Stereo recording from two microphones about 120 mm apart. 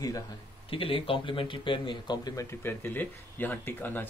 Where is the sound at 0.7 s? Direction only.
50° left (ahead or behind); by 4.1 s 15° left (ahead or behind).